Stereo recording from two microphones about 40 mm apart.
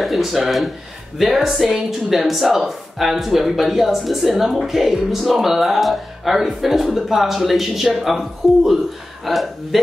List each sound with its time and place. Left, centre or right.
0.0 s speech: centre